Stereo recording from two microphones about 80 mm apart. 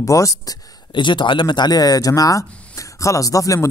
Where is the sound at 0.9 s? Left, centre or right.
Left.